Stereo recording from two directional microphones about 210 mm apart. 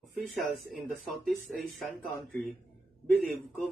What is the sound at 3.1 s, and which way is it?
Speech, centre (ahead or behind).